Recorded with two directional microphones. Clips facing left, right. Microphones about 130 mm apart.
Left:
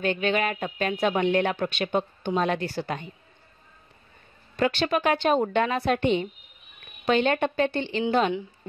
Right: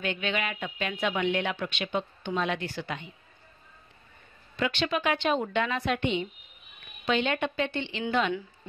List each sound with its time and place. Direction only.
0.0 s speech: 40° left (ahead or behind)
4.6 s speech: 40° left (ahead or behind)